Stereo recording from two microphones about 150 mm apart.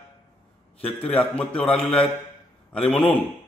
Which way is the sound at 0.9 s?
10° left (ahead or behind).